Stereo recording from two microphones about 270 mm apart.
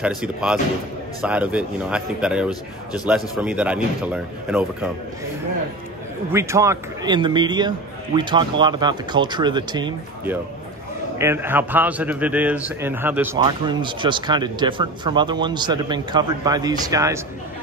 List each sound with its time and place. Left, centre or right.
0.0 s a man's voice: centre
6.3 s a man's voice: centre